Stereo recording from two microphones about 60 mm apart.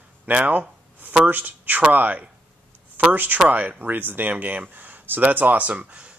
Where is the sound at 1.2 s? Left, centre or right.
Right.